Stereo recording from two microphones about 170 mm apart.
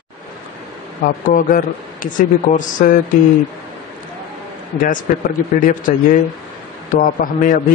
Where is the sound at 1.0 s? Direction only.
50° left (ahead or behind).